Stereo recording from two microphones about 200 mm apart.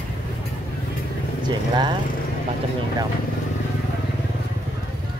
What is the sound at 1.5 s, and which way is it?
Speech, 20° right (ahead or behind).